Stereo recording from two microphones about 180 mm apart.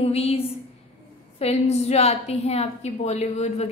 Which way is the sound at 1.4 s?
35° left (ahead or behind).